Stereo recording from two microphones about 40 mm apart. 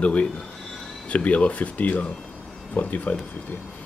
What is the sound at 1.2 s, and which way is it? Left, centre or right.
Speech, left.